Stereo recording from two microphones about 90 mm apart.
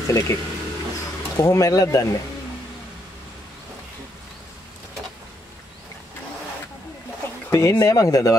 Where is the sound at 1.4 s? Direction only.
40° left (ahead or behind).